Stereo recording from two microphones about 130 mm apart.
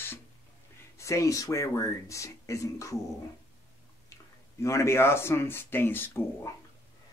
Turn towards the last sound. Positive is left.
turn(degrees=20)  # may be behind; listen again after turning